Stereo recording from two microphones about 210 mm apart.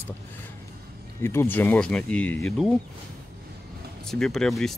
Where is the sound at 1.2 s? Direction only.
10° left (ahead or behind).